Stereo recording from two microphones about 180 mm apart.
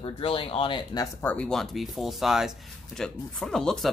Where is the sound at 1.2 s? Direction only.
10° left (ahead or behind).